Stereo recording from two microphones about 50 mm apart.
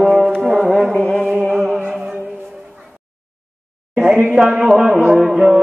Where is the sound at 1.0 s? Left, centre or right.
Centre.